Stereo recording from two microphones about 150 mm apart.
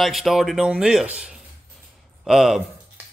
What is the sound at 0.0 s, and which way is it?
Speech, centre (ahead or behind).